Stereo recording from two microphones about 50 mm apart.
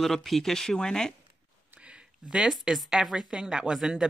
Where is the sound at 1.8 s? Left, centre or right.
Centre.